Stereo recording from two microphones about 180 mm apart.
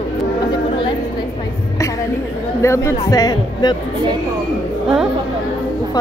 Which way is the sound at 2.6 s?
15° left (ahead or behind).